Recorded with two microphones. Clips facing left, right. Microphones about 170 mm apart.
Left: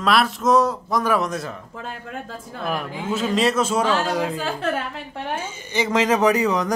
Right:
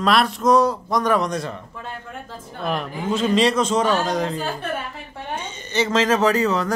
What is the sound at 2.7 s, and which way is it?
A man's voice, 5° left (ahead or behind).